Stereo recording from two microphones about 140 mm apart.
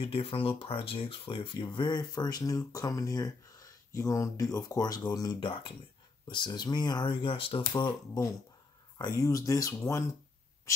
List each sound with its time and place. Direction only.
0.0 s speech: 40° left (ahead or behind)
5.4 s speech: 40° left (ahead or behind); by 10.0 s 25° left (ahead or behind)